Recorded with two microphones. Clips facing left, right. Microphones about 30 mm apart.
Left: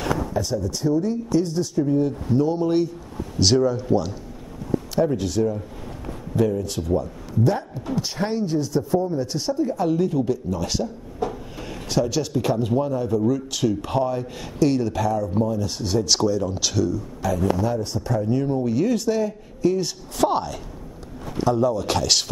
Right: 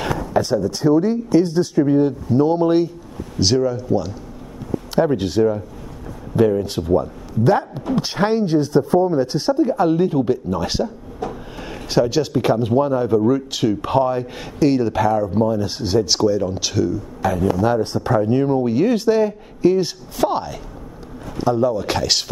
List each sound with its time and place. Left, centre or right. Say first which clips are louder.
0.3 s speech: right 6 dB; right
2.0 s speech: right 4 dB; right
3.3 s speech: right 1 dB; centre
4.9 s speech: right 5 dB; right
7.4 s speech: right 7 dB; right
7.9 s speech: right 6 dB; right
11.9 s speech: right 5 dB; right
16.1 s speech: right 3 dB; centre
17.2 s a man's voice: right 4 dB; right
17.6 s speech: right 6 dB; right
18.2 s speech: right 3 dB; right
20.2 s speech: right 1 dB; centre